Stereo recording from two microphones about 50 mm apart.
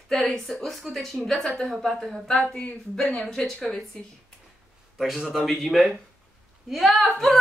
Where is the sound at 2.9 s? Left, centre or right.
Centre.